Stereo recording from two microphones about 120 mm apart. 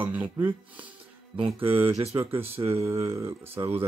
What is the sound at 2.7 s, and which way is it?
Speech, 25° right (ahead or behind).